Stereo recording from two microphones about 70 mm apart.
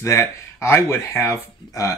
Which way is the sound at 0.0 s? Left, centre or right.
Left.